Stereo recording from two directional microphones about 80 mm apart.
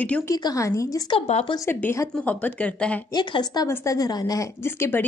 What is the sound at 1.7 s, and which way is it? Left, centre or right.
Speech, left.